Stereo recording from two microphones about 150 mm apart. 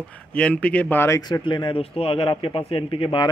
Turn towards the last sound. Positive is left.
turn(degrees=35)  # may be behind; listen again after turning